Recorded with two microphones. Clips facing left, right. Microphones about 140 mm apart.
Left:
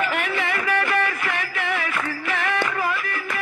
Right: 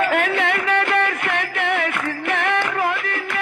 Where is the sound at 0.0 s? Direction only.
60° right (ahead or behind).